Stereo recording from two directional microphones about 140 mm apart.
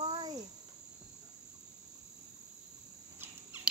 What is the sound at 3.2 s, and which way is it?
Cricket, 15° right (ahead or behind).